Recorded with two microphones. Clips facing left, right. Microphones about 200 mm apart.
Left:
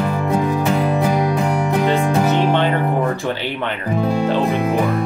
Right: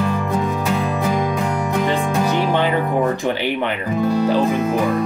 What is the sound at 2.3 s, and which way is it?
Music, 10° right (ahead or behind).